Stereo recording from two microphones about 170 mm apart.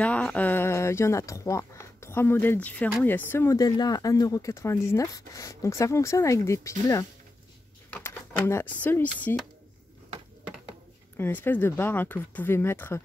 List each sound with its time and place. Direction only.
0.0 s speech: 10° left (ahead or behind)
11.1 s speech: 15° left (ahead or behind)